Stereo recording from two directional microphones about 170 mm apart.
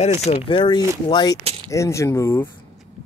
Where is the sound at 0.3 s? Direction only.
30° left (ahead or behind).